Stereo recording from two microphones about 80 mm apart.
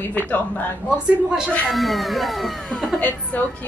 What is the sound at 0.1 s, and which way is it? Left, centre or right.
Speech, centre.